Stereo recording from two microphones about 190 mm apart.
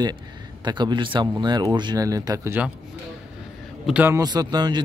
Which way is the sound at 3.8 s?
10° right (ahead or behind).